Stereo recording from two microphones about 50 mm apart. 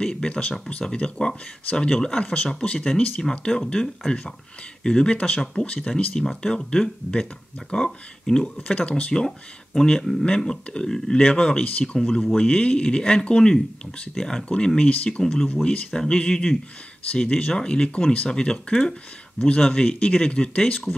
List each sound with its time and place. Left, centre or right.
0.0 s speech: centre
9.8 s speech: centre
12.4 s speech: left